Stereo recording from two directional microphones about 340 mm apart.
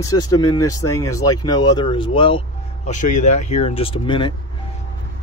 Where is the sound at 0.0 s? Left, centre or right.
Centre.